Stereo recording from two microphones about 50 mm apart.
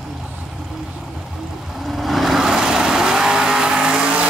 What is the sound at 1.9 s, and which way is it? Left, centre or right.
Vehicle, centre.